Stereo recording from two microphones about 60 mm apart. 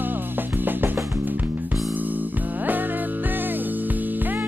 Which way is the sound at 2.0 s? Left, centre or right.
Right.